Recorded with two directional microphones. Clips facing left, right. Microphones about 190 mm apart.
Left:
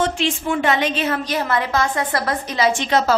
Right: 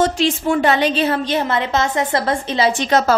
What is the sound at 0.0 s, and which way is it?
A woman's voice, 40° right (ahead or behind).